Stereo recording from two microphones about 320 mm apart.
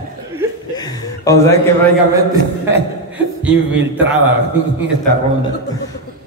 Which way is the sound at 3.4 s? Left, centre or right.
Centre.